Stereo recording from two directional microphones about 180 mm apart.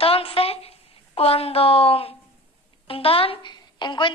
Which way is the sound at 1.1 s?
35° left (ahead or behind).